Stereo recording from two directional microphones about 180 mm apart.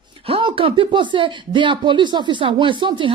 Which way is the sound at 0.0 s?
30° right (ahead or behind).